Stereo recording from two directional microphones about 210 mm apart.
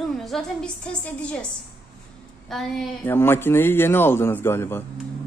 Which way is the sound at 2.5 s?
Centre (ahead or behind).